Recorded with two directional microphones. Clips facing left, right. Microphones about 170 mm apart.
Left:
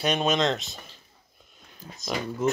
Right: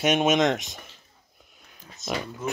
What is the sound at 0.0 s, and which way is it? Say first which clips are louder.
Speech: right 3 dB; 20° right (ahead or behind).